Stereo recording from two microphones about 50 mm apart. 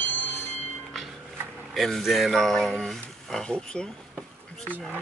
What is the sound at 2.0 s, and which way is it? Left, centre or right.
Speech, centre.